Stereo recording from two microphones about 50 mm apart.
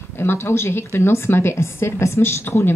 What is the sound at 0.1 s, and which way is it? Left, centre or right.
A woman's voice, left.